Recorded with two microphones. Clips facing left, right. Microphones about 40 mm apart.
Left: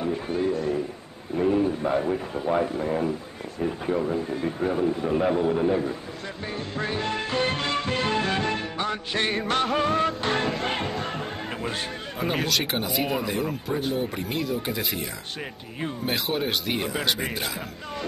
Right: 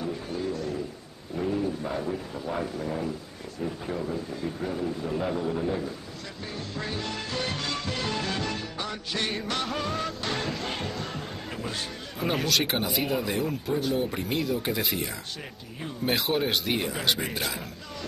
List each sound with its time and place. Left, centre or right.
0.0 s a man's voice: left
6.5 s music: left
12.4 s speech: centre
16.1 s speech: centre